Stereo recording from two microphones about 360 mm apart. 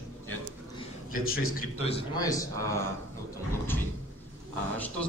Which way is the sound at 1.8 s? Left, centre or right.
Centre.